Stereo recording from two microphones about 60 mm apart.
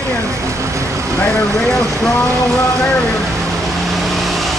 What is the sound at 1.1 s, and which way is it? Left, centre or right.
Speech, left.